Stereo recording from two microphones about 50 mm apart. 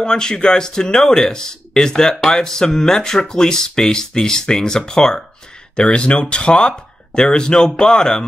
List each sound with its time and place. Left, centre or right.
0.0 s speech: centre